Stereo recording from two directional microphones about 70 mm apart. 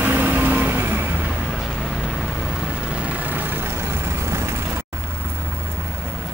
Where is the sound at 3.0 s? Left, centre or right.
Right.